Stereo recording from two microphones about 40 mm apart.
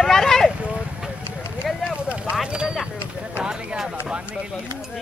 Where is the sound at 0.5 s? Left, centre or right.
Right.